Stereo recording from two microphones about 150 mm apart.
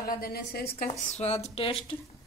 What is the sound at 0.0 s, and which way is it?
Speech, 85° left.